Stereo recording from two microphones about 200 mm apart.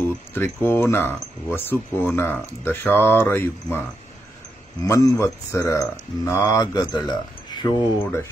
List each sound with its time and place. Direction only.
0.0 s speech: 10° left (ahead or behind)
4.8 s speech: 15° left (ahead or behind)
8.0 s speech: 10° left (ahead or behind)